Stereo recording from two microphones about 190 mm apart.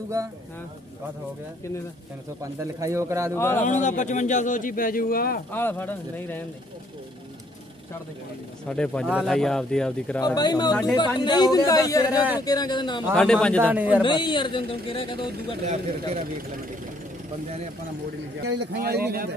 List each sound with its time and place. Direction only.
2.4 s speech: 15° right (ahead or behind)
3.3 s speech: 10° left (ahead or behind)
3.6 s a man's voice: 40° left (ahead or behind)
5.5 s speech: 10° left (ahead or behind)
8.6 s speech: 5° left (ahead or behind)
10.2 s a man's voice: 20° left (ahead or behind)
13.1 s speech: 5° left (ahead or behind)
13.7 s speech: 10° right (ahead or behind)
14.0 s a man's voice: 25° left (ahead or behind)
18.4 s speech: 55° right (ahead or behind)